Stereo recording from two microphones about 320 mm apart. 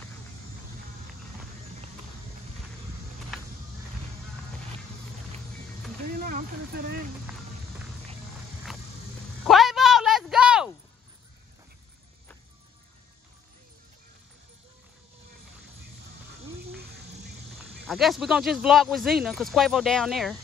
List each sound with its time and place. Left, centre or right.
6.2 s speech: right
9.4 s a sound: centre
17.8 s speech: centre